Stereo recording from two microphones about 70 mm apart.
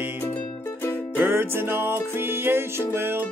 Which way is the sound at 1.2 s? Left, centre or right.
Right.